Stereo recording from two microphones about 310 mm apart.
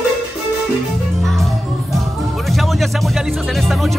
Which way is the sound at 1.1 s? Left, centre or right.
Centre.